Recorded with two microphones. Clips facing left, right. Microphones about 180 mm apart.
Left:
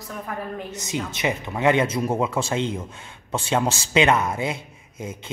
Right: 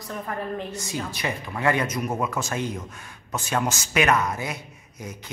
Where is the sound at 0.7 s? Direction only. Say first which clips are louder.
Left 2 dB; 20° left (ahead or behind).